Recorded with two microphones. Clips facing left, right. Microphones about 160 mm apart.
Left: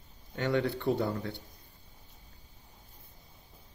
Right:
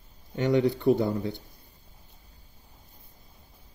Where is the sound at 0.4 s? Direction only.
15° right (ahead or behind).